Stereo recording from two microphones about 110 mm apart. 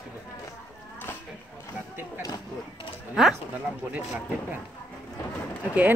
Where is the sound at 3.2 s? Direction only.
5° right (ahead or behind).